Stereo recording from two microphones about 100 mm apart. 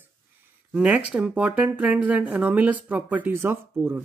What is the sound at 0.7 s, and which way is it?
Speech, 15° right (ahead or behind).